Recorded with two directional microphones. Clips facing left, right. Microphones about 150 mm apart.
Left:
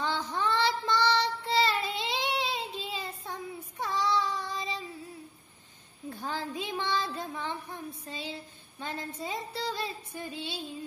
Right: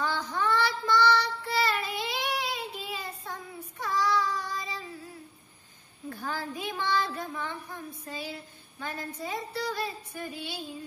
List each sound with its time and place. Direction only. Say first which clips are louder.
0.0 s child singing: right 1 dB; 25° left (ahead or behind)
6.0 s child singing: even; 20° left (ahead or behind)